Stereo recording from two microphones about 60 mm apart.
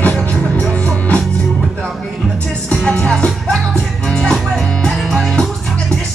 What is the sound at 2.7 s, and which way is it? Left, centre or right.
Music, centre.